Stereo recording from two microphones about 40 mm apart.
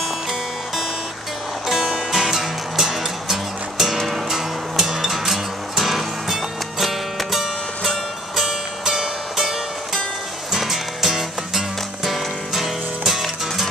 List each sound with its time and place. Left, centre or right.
1.7 s music: centre